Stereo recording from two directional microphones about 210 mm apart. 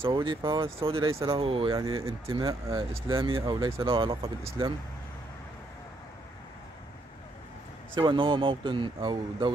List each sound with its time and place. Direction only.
0.0 s speech: 25° right (ahead or behind)
7.9 s speech: 25° right (ahead or behind)